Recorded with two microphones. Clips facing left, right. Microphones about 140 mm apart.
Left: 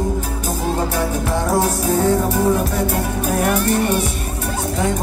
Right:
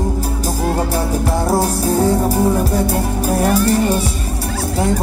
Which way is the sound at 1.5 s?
35° right (ahead or behind).